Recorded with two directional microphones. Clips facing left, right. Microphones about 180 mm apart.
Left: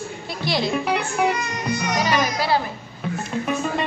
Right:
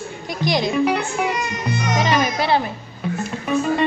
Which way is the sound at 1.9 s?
25° right (ahead or behind).